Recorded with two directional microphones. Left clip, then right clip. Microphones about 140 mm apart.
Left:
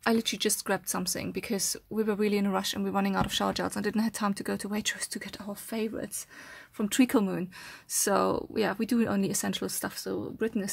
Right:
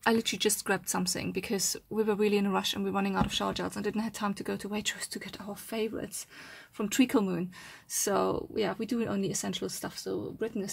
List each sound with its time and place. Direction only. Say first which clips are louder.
0.0 s speech: even; 10° left (ahead or behind); by 10.7 s 50° left (ahead or behind)